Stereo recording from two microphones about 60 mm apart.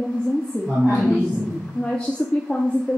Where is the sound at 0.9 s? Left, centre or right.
Centre.